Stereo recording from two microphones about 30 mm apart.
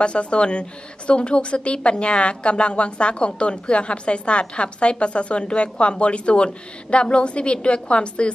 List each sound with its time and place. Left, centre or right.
0.0 s a woman's voice: left